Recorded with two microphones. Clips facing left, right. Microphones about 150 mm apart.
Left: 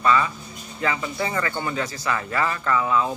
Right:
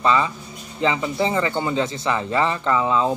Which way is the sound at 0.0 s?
20° right (ahead or behind).